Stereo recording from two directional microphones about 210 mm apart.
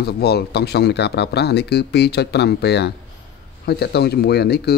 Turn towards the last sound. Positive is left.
turn(degrees=50)  # may be behind; listen again after turning